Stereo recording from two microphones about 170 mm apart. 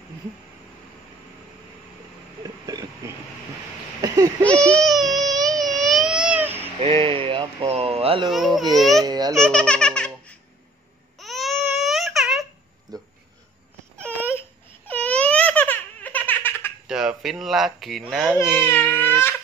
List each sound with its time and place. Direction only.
4.0 s a sound: 20° right (ahead or behind)
4.5 s baby cry: 5° left (ahead or behind); by 6.7 s 10° right (ahead or behind)
6.8 s a sound: 35° right (ahead or behind)
8.3 s speech: centre (ahead or behind)
9.0 s speech: 25° right (ahead or behind)
9.3 s baby laughter: 5° left (ahead or behind)
11.1 s baby cry: centre (ahead or behind)
12.9 s a sound: 20° right (ahead or behind)
14.0 s baby cry: 10° left (ahead or behind)
14.9 s baby laughter: 10° left (ahead or behind)
16.8 s a sound: 5° right (ahead or behind)
18.6 s speech: 10° left (ahead or behind)